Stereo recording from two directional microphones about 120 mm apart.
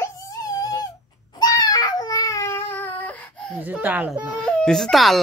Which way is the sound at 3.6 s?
15° right (ahead or behind).